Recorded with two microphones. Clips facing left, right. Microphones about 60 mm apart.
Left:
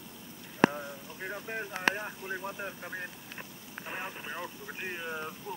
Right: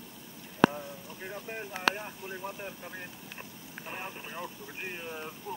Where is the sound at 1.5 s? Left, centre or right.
Centre.